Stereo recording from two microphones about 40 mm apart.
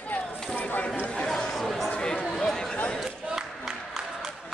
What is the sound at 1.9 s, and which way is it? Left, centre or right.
Chatter, left.